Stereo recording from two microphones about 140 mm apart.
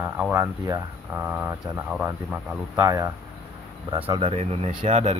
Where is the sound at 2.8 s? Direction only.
20° right (ahead or behind).